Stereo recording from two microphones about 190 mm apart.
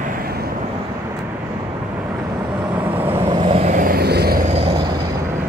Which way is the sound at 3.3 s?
30° right (ahead or behind).